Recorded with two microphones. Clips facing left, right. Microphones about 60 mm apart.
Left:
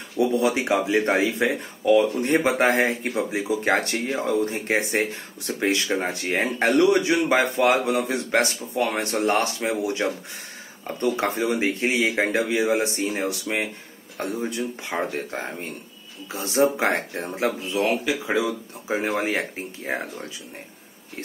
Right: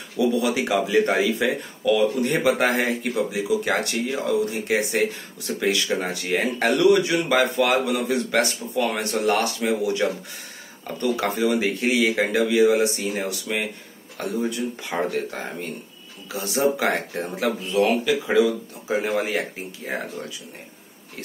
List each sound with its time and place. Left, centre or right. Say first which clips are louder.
0.2 s speech: even; left; by 18.4 s centre
18.4 s speech: right 6 dB; left